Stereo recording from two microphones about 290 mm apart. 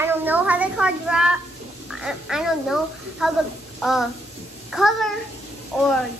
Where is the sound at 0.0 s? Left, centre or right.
Centre.